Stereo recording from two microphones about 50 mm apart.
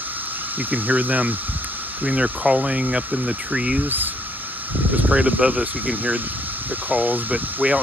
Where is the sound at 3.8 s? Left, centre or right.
Right.